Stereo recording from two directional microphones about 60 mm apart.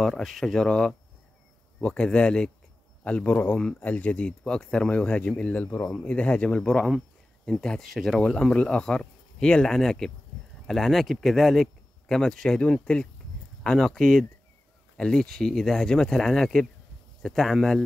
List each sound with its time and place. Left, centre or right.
0.0 s speech: centre
7.6 s speech: centre
8.3 s speech: centre